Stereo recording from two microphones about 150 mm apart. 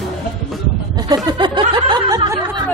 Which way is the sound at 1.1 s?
25° right (ahead or behind).